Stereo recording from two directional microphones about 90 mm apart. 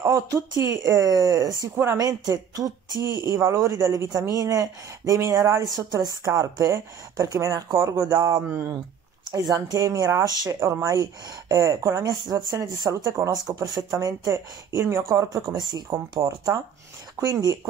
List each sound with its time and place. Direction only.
0.0 s speech: 35° right (ahead or behind)
9.3 s speech: 45° right (ahead or behind)
13.9 s speech: 35° right (ahead or behind)
15.2 s speech: 50° right (ahead or behind)
16.3 s speech: 40° right (ahead or behind)